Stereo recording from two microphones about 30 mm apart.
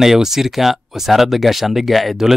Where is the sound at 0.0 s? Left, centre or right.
Centre.